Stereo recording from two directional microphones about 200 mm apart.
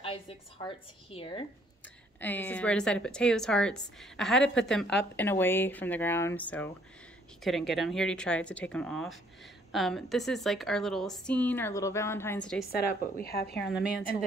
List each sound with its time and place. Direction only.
0.0 s a woman's voice: 25° left (ahead or behind)
2.1 s a woman's voice: 10° left (ahead or behind)
12.7 s a woman's voice: 50° left (ahead or behind)
13.5 s a woman's voice: centre (ahead or behind)